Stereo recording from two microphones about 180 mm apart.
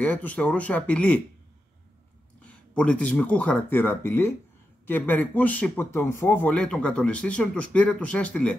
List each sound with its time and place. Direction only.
0.0 s a man's voice: 10° left (ahead or behind)
2.4 s a man's voice: 5° left (ahead or behind)